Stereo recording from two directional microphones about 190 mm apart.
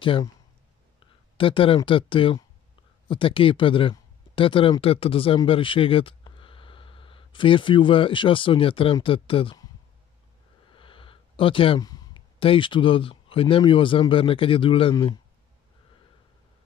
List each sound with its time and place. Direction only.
0.0 s speech: 25° left (ahead or behind)
10.7 s speech: 25° left (ahead or behind)